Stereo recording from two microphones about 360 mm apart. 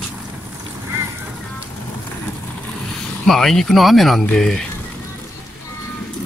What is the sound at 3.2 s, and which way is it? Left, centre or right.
Speech, centre.